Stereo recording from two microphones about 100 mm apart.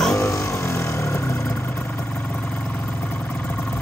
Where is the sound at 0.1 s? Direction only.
30° left (ahead or behind).